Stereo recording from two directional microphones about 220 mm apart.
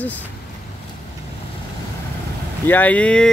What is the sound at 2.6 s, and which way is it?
Speech, 10° left (ahead or behind).